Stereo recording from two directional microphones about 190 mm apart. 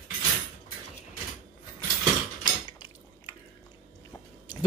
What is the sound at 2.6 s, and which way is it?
Dishes, 25° left (ahead or behind).